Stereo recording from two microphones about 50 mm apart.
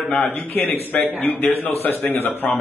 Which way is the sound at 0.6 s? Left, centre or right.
Left.